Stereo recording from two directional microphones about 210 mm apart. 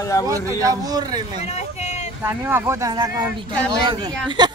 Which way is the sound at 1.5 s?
30° left (ahead or behind).